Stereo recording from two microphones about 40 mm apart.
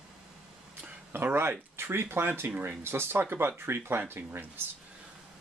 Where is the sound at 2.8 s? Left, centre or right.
Right.